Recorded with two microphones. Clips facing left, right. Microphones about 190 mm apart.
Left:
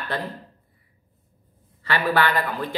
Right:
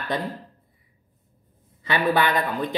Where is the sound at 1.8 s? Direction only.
15° right (ahead or behind).